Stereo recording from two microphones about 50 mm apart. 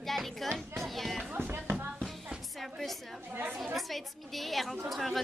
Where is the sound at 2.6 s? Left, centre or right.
Centre.